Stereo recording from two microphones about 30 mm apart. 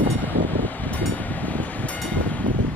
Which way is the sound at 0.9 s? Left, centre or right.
Left.